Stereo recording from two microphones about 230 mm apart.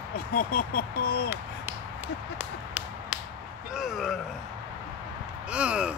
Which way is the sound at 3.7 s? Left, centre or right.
Centre.